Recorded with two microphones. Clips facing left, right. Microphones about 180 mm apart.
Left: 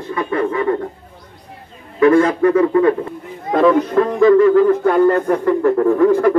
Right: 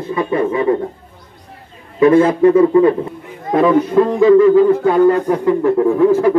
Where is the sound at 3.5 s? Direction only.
5° right (ahead or behind).